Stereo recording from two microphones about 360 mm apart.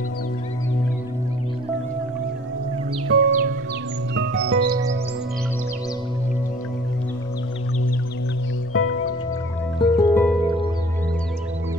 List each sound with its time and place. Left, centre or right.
3.1 s music: right
8.7 s music: left
9.8 s music: centre